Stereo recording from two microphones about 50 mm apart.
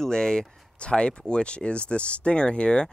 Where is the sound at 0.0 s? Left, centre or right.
Centre.